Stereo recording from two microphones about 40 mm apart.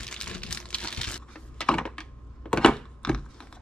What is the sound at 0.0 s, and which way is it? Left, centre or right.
Crumpling, left.